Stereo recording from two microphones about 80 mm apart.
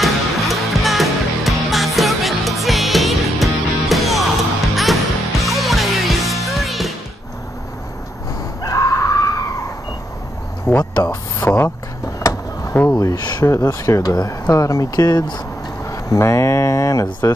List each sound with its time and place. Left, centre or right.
0.0 s music: centre
8.6 s screaming: left
10.7 s speech: centre
12.2 s a sound: left
12.8 s speech: left
13.4 s speech: left
15.1 s speech: left
15.8 s speech: left